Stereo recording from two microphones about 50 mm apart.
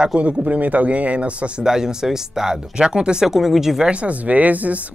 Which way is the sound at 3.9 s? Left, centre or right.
Right.